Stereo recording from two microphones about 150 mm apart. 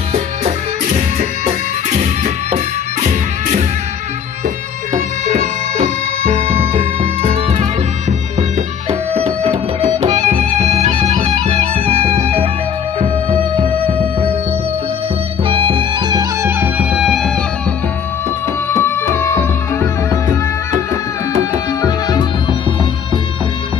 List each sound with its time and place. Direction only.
4.9 s music: 50° right (ahead or behind)
9.1 s music: 45° right (ahead or behind)
13.6 s music: 35° right (ahead or behind)
15.4 s music: 35° right (ahead or behind)
16.2 s music: 15° right (ahead or behind)
18.8 s music: 15° left (ahead or behind)
21.8 s music: 25° left (ahead or behind)